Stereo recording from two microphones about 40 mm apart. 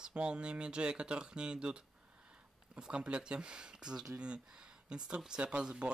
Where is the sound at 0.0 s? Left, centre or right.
Right.